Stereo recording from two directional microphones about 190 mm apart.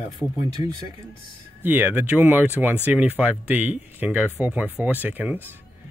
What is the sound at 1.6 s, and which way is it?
Speech, 10° right (ahead or behind).